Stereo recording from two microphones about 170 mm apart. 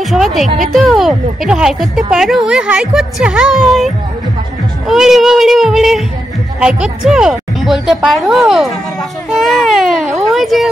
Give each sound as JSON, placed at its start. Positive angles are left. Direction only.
{"t": 0.0, "sound": "speech", "side_deg": 0}